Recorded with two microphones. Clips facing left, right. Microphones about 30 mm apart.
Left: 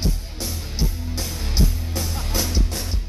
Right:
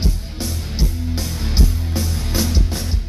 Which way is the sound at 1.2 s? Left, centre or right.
Centre.